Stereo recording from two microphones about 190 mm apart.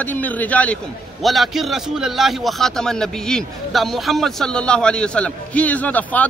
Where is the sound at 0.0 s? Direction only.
10° left (ahead or behind).